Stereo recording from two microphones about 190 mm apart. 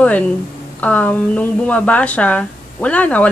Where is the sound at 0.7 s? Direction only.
5° left (ahead or behind).